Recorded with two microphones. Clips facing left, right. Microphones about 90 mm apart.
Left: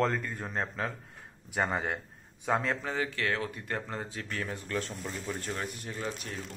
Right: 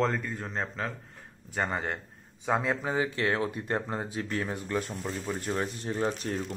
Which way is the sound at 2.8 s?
20° right (ahead or behind).